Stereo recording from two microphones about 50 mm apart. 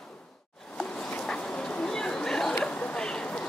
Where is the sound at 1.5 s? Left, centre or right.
Centre.